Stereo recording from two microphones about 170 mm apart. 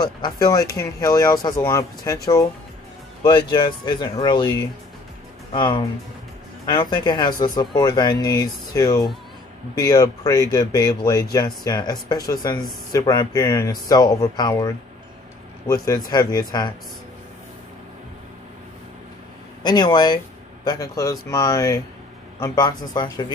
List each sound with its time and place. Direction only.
0.0 s speech: 25° left (ahead or behind)
3.3 s speech: 25° left (ahead or behind)
6.9 s speech: 25° left (ahead or behind)
15.7 s speech: 20° left (ahead or behind)
19.6 s speech: 25° left (ahead or behind)